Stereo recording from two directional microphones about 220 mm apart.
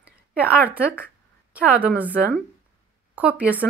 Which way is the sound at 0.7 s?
5° right (ahead or behind).